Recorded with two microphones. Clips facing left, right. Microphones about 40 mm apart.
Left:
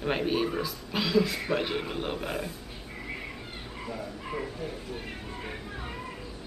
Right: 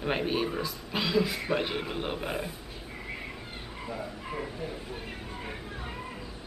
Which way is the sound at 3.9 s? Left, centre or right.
Centre.